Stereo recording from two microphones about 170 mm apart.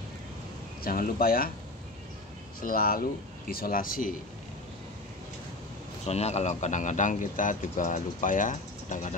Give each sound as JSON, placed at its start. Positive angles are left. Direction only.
{"t": 0.8, "sound": "speech", "side_deg": 55}
{"t": 2.6, "sound": "speech", "side_deg": 60}
{"t": 6.0, "sound": "speech", "side_deg": 40}